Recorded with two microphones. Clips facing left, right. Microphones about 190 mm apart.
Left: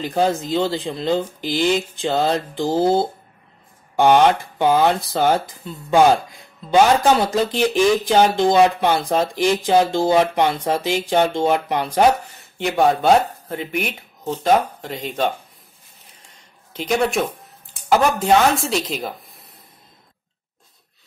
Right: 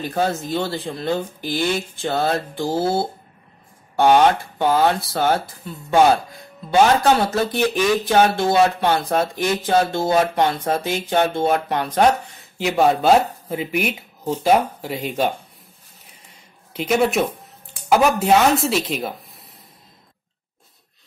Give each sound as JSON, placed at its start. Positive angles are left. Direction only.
{"t": 0.0, "sound": "speech", "side_deg": 15}
{"t": 4.6, "sound": "speech", "side_deg": 15}
{"t": 16.7, "sound": "speech", "side_deg": -5}